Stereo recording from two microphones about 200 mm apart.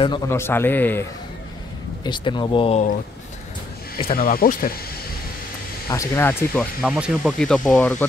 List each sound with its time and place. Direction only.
0.3 s speech: 10° left (ahead or behind)
2.0 s speech: 25° left (ahead or behind)
4.1 s speech: 45° left (ahead or behind)
5.9 s speech: 15° left (ahead or behind)
6.8 s speech: 5° right (ahead or behind)